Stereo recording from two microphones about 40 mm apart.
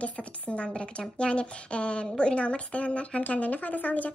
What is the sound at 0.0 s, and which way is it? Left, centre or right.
A woman's voice, left.